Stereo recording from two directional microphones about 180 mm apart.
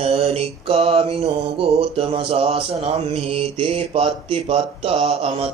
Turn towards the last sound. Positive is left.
turn(degrees=-35)  # may be behind; listen again after turning